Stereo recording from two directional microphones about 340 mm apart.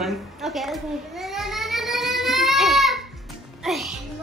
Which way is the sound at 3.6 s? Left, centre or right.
Centre.